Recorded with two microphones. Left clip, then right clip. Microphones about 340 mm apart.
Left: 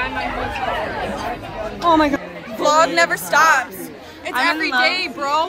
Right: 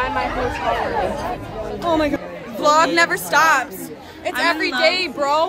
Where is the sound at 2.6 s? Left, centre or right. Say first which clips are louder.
Even; centre.